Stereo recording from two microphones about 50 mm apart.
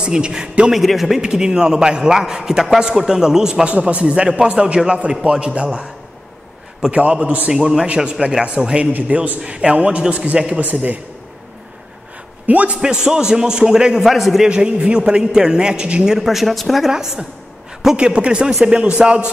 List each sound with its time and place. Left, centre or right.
0.0 s a man's voice: centre
0.7 s a man's voice: centre
1.2 s a man's voice: centre
3.6 s a man's voice: right
9.0 s a man's voice: right
12.4 s a man's voice: right
12.8 s a man's voice: centre
14.5 s a man's voice: centre
16.9 s a man's voice: centre
18.5 s a man's voice: centre
18.8 s a man's voice: right